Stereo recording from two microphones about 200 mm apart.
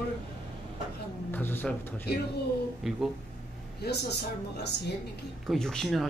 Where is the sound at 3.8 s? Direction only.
55° left (ahead or behind).